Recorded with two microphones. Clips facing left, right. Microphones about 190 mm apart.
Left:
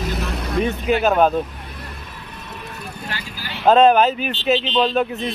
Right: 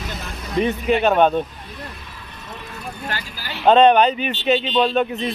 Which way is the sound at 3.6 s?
Centre (ahead or behind).